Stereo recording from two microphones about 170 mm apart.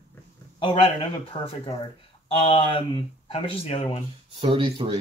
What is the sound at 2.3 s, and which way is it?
Speech, 35° left (ahead or behind).